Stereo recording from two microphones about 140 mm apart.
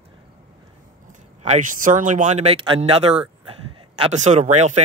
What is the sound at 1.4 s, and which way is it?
Speech, 60° right (ahead or behind).